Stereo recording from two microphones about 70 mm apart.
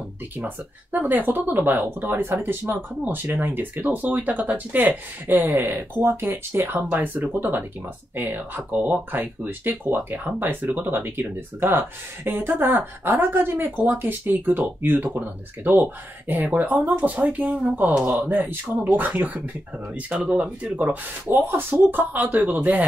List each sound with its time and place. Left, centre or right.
0.9 s speech: right